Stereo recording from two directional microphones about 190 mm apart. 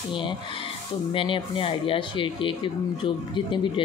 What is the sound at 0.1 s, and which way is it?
Speech, 25° left (ahead or behind).